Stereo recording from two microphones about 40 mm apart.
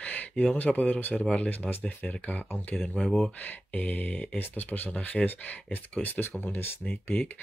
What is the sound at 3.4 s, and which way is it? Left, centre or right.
Speech, left.